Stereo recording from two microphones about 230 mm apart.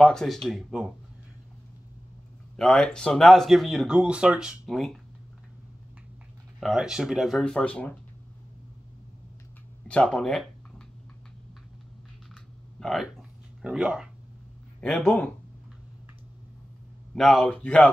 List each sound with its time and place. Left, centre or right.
0.0 s speech: centre
2.5 s speech: centre
6.6 s speech: centre
9.8 s speech: centre
12.7 s speech: centre
17.1 s speech: centre